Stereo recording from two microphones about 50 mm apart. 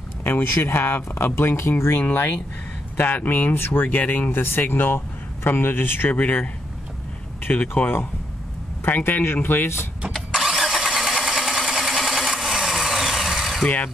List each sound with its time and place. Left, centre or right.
0.2 s speech: left
3.5 s speech: left
4.0 s speech: left
4.3 s speech: left
6.1 s speech: left
7.7 s speech: left
10.1 s engine starting: centre